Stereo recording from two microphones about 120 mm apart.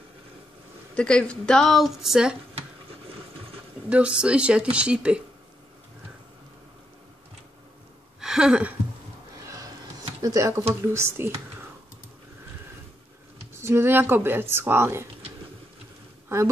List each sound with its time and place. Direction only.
0.9 s a woman's voice: 10° left (ahead or behind)
3.9 s speech: 10° right (ahead or behind)
8.2 s a sound: 5° right (ahead or behind)
10.2 s speech: 25° right (ahead or behind)
13.6 s speech: 20° right (ahead or behind)